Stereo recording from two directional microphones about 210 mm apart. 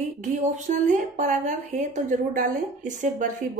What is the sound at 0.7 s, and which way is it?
A woman's voice, 40° right (ahead or behind).